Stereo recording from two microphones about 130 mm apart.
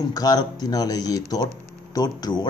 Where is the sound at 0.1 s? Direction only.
30° left (ahead or behind).